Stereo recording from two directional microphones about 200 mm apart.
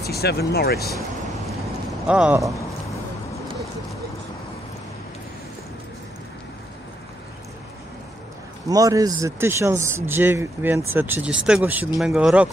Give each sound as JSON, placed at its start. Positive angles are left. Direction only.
{"t": 0.0, "sound": "speech", "side_deg": 55}
{"t": 2.0, "sound": "speech", "side_deg": -5}
{"t": 8.6, "sound": "speech", "side_deg": -15}